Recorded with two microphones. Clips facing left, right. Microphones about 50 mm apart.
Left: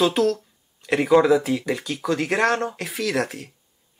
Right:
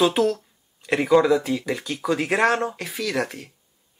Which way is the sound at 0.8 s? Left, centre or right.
Centre.